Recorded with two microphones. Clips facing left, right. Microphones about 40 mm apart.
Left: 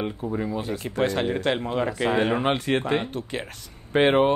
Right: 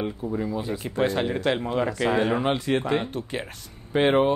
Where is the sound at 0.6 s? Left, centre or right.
Left.